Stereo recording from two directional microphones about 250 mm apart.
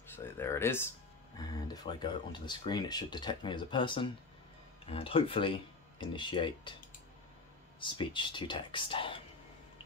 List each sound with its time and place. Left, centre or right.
0.1 s speech: centre
7.8 s speech: centre